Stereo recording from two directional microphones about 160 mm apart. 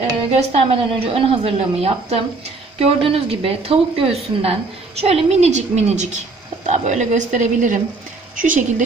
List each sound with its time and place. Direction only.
0.5 s a woman's voice: 40° right (ahead or behind); by 8.8 s 55° right (ahead or behind)